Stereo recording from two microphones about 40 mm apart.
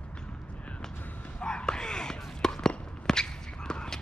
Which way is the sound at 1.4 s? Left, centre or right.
Left.